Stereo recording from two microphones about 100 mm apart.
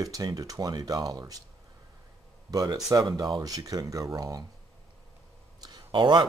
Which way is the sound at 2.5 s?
35° right (ahead or behind).